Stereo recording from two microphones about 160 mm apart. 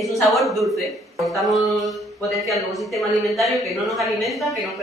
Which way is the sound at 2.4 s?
Centre (ahead or behind).